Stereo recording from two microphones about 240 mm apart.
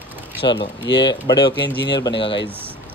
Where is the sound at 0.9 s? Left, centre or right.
Left.